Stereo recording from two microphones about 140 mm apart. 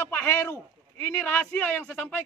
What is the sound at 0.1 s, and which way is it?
A man's voice, 15° left (ahead or behind).